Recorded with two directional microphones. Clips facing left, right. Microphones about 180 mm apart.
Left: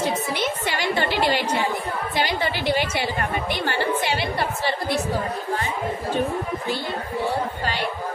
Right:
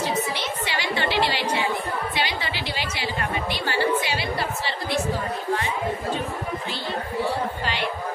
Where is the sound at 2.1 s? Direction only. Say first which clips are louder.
Left 4 dB; 50° left (ahead or behind).